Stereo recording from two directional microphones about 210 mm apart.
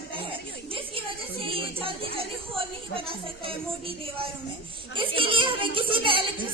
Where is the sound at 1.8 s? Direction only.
25° right (ahead or behind).